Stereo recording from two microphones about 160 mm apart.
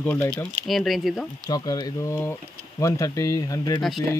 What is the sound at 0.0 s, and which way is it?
Speech, 10° left (ahead or behind).